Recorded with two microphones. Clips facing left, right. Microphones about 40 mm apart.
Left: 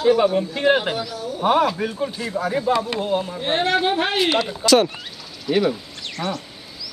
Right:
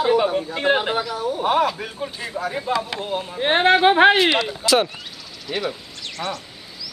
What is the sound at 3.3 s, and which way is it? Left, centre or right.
Speech, right.